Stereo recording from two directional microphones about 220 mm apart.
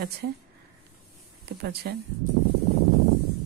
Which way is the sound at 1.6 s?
45° right (ahead or behind).